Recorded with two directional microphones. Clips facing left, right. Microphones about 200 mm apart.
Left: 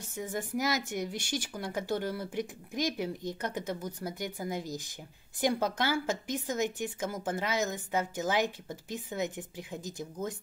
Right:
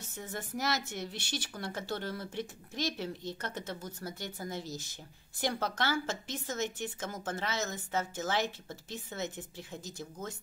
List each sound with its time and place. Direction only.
0.1 s speech: 15° left (ahead or behind)